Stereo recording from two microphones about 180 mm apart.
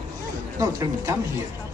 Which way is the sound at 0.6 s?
20° right (ahead or behind).